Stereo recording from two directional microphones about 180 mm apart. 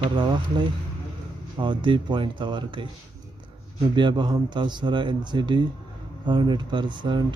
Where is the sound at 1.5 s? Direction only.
25° right (ahead or behind).